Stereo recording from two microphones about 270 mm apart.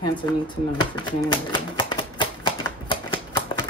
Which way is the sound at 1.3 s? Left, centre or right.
Centre.